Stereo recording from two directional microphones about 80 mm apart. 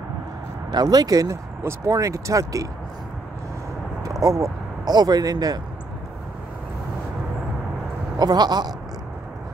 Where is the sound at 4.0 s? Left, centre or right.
Right.